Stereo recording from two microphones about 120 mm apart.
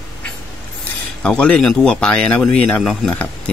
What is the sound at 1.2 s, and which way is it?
Speech, 10° left (ahead or behind).